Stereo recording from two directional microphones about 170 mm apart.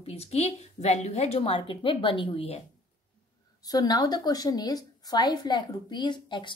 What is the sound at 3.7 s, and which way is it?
Speech, 20° left (ahead or behind).